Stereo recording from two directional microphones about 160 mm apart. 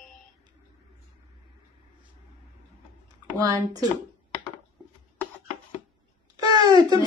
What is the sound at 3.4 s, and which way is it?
Speech, 20° right (ahead or behind).